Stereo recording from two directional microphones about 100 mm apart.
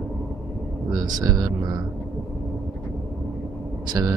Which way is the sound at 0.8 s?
40° right (ahead or behind).